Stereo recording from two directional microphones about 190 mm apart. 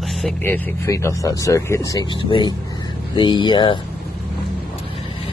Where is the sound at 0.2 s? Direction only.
10° left (ahead or behind).